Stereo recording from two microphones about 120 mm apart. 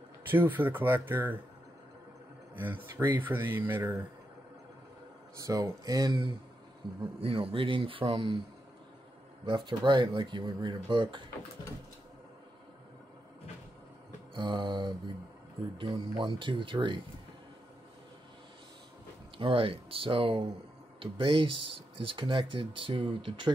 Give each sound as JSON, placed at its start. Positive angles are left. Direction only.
{"t": 0.3, "sound": "speech", "side_deg": -15}
{"t": 3.2, "sound": "speech", "side_deg": -20}
{"t": 5.4, "sound": "speech", "side_deg": -30}
{"t": 7.2, "sound": "speech", "side_deg": -50}
{"t": 9.5, "sound": "speech", "side_deg": -40}
{"t": 14.3, "sound": "speech", "side_deg": -40}
{"t": 19.3, "sound": "speech", "side_deg": -50}